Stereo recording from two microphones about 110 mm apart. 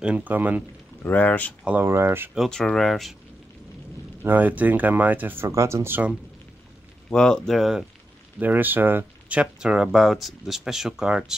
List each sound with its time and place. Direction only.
0.0 s speech: 15° right (ahead or behind)
1.0 s speech: 15° left (ahead or behind)
1.8 s speech: 20° right (ahead or behind)
2.3 s speech: centre (ahead or behind)
4.2 s speech: 15° right (ahead or behind)
7.1 s speech: 5° left (ahead or behind)
8.4 s speech: 15° right (ahead or behind)